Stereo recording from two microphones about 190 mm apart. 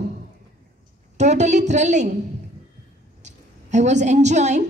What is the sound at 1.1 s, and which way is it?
A woman's voice, 35° right (ahead or behind).